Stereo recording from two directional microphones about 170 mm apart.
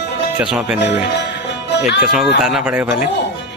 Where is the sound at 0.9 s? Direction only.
90° left.